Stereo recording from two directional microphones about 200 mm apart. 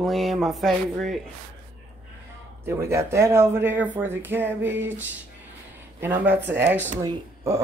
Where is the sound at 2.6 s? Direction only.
15° right (ahead or behind).